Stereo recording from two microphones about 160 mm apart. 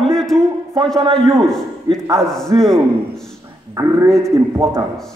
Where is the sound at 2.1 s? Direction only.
5° left (ahead or behind).